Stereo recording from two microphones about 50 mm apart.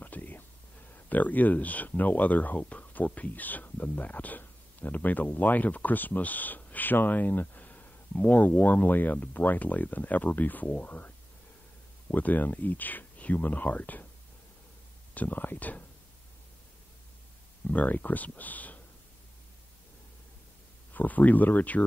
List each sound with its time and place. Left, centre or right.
0.0 s whispering: left
0.9 s speech: left
15.1 s speech: left
17.6 s speech: left
20.9 s speech: left